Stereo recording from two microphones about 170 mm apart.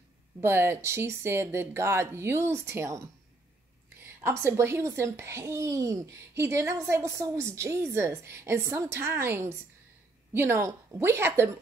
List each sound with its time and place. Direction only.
0.4 s a child's voice: 15° right (ahead or behind)